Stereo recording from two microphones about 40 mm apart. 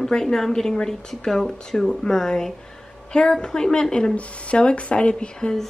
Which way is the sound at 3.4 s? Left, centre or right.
Centre.